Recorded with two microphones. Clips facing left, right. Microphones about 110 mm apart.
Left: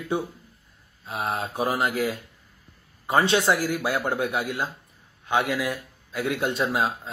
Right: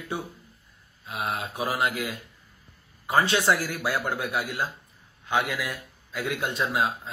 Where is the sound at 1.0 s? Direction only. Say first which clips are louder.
Left 2 dB; 35° left (ahead or behind).